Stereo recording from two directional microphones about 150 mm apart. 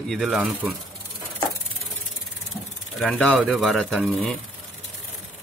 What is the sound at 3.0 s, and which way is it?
Speech, 5° left (ahead or behind).